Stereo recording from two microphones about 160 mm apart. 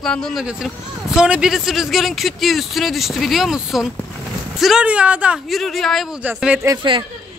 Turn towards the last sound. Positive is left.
turn(degrees=-30)  # may be behind; listen again after turning